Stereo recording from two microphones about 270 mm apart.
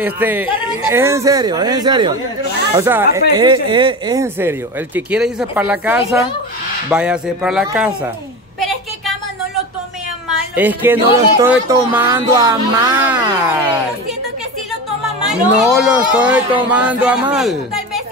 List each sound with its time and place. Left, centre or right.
0.0 s speech: centre
8.5 s a sound: centre
10.5 s speech: centre
15.5 s speech: centre